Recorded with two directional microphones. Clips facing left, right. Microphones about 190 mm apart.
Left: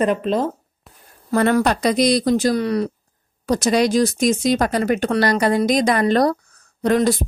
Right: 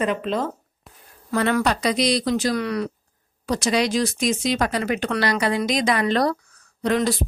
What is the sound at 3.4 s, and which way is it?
A woman's voice, 45° left (ahead or behind).